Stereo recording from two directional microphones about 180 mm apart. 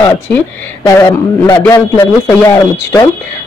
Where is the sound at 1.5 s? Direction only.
10° left (ahead or behind).